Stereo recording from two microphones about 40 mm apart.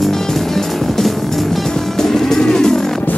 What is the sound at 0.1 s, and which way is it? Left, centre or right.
Music, centre.